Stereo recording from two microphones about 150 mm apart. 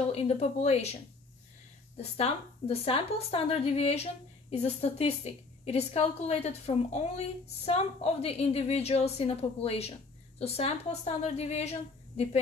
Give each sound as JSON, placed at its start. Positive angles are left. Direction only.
{"t": 0.0, "sound": "a woman's voice", "side_deg": 40}
{"t": 2.0, "sound": "a woman's voice", "side_deg": 45}